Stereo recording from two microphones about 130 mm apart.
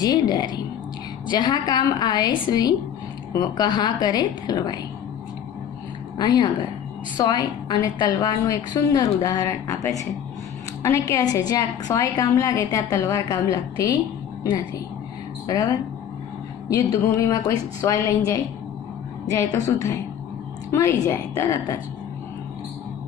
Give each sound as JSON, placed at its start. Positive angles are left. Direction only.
{"t": 0.0, "sound": "a woman's voice", "side_deg": 30}
{"t": 6.1, "sound": "a woman's voice", "side_deg": 35}
{"t": 15.4, "sound": "a woman's voice", "side_deg": 30}